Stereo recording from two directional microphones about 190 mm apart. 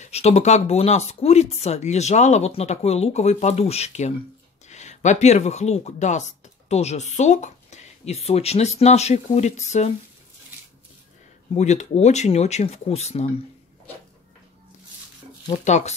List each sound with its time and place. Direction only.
0.0 s speech: 35° left (ahead or behind)
11.5 s speech: 35° left (ahead or behind)
15.6 s speech: 35° left (ahead or behind)